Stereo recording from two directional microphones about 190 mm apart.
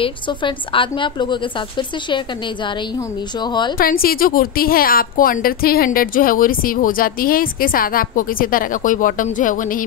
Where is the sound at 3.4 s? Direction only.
25° left (ahead or behind).